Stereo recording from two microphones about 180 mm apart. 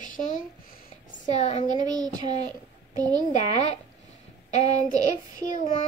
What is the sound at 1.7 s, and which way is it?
Child singing, 20° right (ahead or behind).